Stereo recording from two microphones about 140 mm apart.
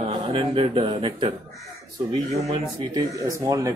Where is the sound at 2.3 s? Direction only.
45° right (ahead or behind).